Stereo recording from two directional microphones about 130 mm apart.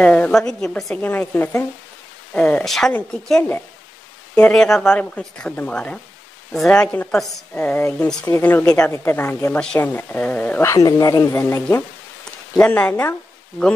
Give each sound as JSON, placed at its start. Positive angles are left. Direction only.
{"t": 0.0, "sound": "a woman's voice", "side_deg": 10}
{"t": 1.0, "sound": "a woman's voice", "side_deg": 15}
{"t": 7.5, "sound": "speech", "side_deg": 15}
{"t": 10.7, "sound": "speech", "side_deg": 25}
{"t": 11.3, "sound": "speech", "side_deg": 15}